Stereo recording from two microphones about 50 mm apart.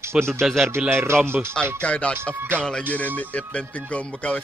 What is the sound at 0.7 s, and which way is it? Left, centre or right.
Speech, right.